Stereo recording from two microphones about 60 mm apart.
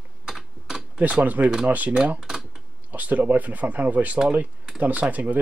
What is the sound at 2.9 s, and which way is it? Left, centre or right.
Speech, right.